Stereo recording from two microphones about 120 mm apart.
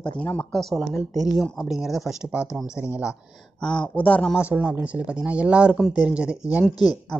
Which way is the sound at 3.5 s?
5° left (ahead or behind).